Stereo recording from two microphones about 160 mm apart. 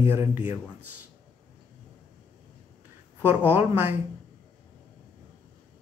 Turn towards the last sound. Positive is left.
turn(degrees=-15)  # may be behind; listen again after turning